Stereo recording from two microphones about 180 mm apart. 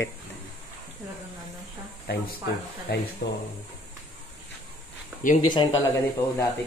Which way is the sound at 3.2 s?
50° left (ahead or behind).